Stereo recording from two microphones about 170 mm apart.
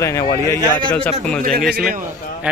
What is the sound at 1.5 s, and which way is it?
Speech, centre (ahead or behind).